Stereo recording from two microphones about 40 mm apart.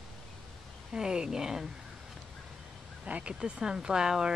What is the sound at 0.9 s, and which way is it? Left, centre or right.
Speech, centre.